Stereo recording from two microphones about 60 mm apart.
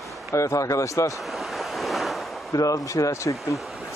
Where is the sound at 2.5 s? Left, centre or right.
Left.